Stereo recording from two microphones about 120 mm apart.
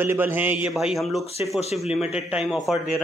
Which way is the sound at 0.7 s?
Centre (ahead or behind).